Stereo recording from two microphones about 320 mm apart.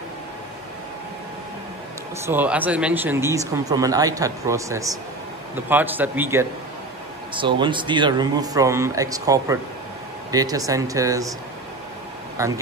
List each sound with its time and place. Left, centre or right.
2.2 s a man's voice: centre
12.4 s speech: centre